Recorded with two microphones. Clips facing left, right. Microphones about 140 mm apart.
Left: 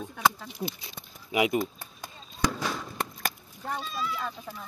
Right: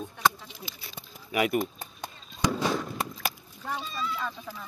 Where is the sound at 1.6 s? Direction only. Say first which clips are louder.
Even; 20° right (ahead or behind).